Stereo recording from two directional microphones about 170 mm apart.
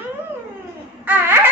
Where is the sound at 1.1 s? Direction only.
10° right (ahead or behind).